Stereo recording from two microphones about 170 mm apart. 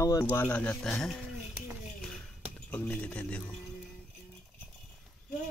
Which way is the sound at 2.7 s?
10° left (ahead or behind).